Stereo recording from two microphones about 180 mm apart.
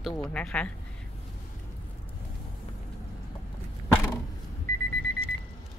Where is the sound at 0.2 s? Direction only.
5° left (ahead or behind).